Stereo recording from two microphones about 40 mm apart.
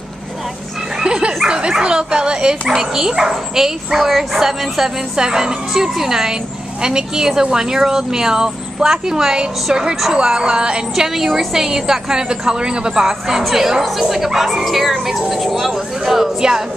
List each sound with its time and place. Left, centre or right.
1.0 s dog: right
1.5 s speech: right
2.7 s speech: centre
11.1 s speech: centre
13.6 s speech: centre